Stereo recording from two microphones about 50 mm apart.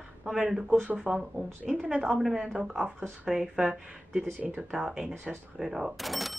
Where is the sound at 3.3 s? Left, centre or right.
Centre.